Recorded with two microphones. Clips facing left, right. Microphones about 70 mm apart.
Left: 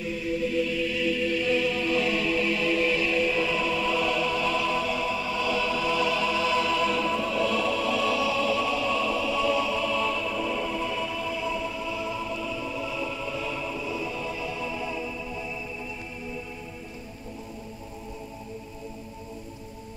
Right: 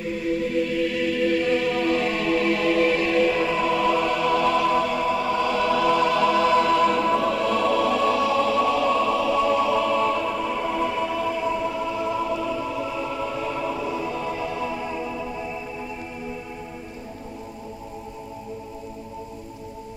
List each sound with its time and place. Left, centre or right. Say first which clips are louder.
0.0 s music: right 4 dB; right